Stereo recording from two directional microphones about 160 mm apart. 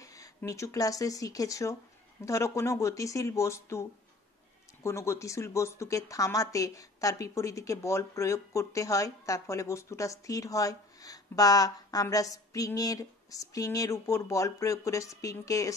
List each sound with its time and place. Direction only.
0.0 s speech: 20° left (ahead or behind)
4.8 s speech: 15° left (ahead or behind)